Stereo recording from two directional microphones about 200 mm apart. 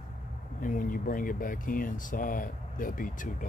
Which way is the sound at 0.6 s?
40° left (ahead or behind).